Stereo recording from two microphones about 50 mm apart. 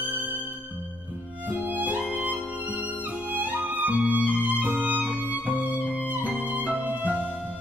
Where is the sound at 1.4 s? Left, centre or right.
Right.